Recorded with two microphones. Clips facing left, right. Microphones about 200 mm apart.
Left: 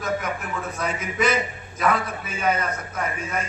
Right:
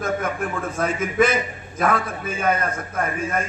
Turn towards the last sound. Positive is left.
turn(degrees=-50)  # may be behind; listen again after turning